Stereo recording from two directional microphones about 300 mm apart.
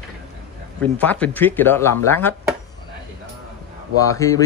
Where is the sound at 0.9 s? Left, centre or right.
Centre.